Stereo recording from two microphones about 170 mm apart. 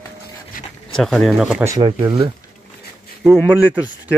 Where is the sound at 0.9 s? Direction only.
Centre (ahead or behind).